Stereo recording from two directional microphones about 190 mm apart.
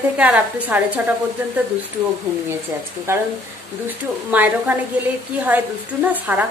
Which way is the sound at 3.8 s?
10° right (ahead or behind).